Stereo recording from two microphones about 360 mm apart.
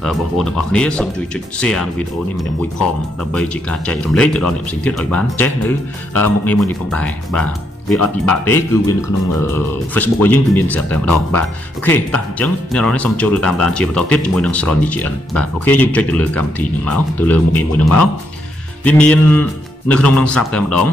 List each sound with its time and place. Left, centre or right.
0.0 s speech: centre
3.3 s speech: centre
9.9 s speech: centre
18.9 s speech: centre